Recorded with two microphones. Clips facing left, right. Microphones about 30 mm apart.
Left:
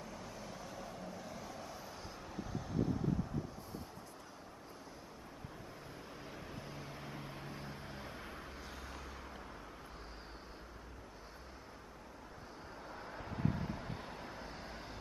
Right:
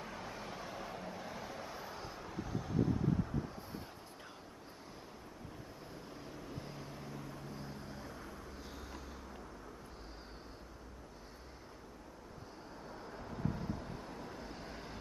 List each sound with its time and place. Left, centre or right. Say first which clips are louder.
0.0 s vehicle: right 3 dB; right; by 3.1 s centre
7.0 s vehicle: even; left
12.9 s vehicle: left 1 dB; centre
14.3 s vehicle: right 1 dB; centre